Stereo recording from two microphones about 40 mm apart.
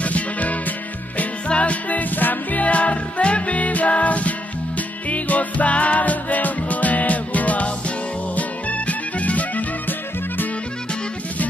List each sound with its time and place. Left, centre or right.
0.0 s music: left
2.6 s music: left
9.8 s music: left